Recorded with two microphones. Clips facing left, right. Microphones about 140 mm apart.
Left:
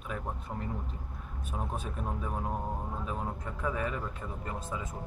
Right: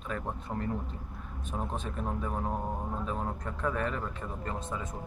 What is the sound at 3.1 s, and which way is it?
Speech, 5° left (ahead or behind).